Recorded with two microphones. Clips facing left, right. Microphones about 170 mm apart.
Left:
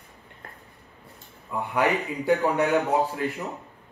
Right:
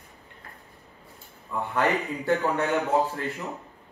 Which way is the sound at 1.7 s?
15° left (ahead or behind).